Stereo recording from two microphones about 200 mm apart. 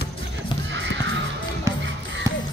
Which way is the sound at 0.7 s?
65° right (ahead or behind).